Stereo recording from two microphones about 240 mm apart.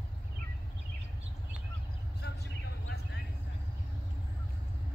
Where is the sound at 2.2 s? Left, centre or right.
Left.